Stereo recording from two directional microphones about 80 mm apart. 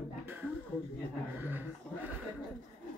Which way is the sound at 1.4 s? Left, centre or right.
Right.